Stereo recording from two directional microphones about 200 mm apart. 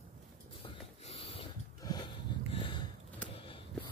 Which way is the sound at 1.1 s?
30° left (ahead or behind).